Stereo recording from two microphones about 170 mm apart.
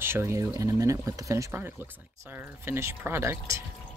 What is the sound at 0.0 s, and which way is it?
Speech, 15° right (ahead or behind).